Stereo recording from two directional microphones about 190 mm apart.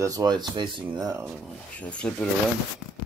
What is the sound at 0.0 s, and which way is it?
Speech, 20° right (ahead or behind).